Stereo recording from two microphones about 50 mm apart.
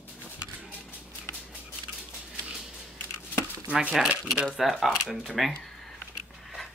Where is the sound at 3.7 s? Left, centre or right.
Centre.